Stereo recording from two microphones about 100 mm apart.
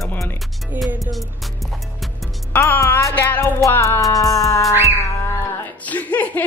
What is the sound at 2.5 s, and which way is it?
Music, 25° left (ahead or behind).